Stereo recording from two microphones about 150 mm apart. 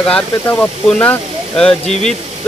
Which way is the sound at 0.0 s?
10° left (ahead or behind).